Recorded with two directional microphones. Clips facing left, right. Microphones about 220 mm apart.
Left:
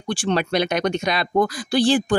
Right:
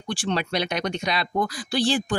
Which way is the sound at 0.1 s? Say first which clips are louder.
Left 5 dB; 50° left (ahead or behind).